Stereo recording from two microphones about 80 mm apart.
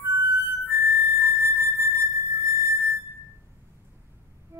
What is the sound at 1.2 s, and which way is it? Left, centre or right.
Music, right.